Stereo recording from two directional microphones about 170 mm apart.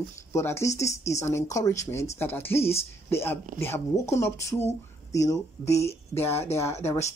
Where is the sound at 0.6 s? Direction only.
20° left (ahead or behind).